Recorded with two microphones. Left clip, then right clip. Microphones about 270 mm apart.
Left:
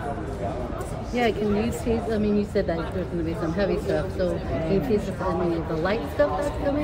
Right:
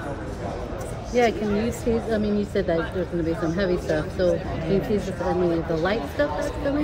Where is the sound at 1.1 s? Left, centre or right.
Right.